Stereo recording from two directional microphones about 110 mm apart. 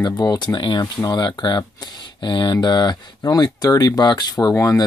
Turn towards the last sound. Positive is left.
turn(degrees=30)  # may be behind; listen again after turning